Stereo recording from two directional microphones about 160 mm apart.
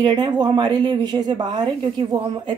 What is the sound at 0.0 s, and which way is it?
Speech, 25° right (ahead or behind).